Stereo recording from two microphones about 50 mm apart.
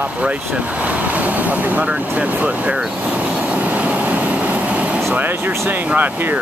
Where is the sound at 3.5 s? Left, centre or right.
Right.